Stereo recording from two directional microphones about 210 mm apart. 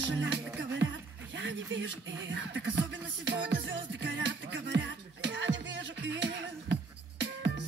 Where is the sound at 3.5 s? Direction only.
60° right (ahead or behind).